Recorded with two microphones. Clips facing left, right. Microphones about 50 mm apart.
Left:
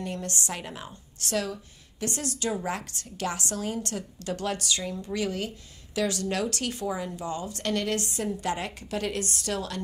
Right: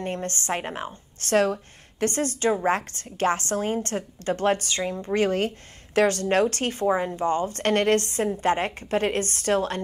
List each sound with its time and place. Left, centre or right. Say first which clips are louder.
0.0 s a woman's voice: right 4 dB; right